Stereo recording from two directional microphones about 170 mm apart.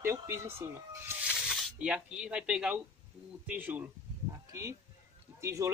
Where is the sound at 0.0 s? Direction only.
15° right (ahead or behind).